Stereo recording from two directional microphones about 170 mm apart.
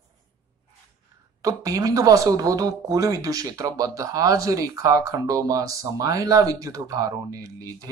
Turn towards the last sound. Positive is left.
turn(degrees=-20)  # may be behind; listen again after turning